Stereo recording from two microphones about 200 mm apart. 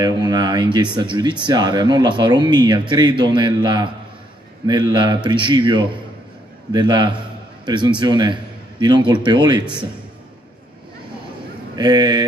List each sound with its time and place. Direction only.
0.0 s a man's voice: 20° right (ahead or behind)
11.7 s a man's voice: 20° right (ahead or behind)